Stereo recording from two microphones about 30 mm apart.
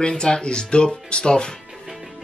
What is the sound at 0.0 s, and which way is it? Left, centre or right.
Speech, left.